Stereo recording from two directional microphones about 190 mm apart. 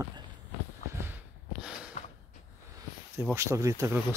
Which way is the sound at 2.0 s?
40° left (ahead or behind).